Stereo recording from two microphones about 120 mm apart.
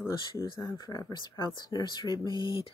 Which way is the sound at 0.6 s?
30° left (ahead or behind).